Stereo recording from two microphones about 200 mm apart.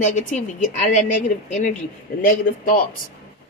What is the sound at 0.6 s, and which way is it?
Speech, 40° left (ahead or behind).